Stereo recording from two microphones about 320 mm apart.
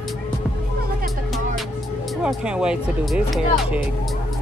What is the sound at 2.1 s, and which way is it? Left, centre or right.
Speech, centre.